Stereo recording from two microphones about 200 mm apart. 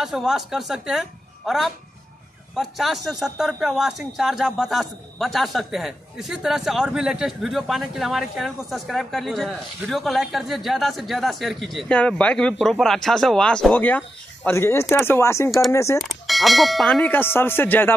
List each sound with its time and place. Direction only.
0.0 s a man's voice: centre (ahead or behind); by 16.0 s 15° left (ahead or behind)
16.0 s a man's voice: centre (ahead or behind)